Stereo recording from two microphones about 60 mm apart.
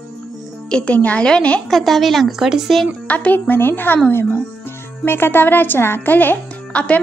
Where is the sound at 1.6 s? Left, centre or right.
Centre.